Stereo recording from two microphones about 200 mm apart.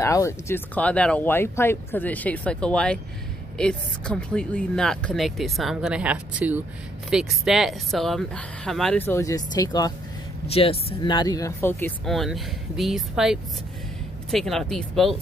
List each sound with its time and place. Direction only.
0.0 s speech: 15° left (ahead or behind)
12.1 s speech: centre (ahead or behind)